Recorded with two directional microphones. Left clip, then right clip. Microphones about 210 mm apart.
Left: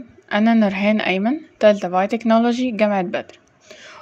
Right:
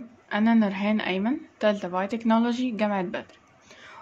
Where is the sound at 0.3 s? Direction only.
35° left (ahead or behind).